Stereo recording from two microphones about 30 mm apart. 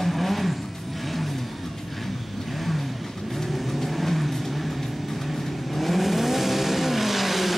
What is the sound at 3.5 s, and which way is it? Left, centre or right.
Vehicle, centre.